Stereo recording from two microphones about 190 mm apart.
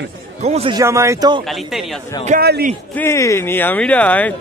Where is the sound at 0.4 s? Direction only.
35° right (ahead or behind).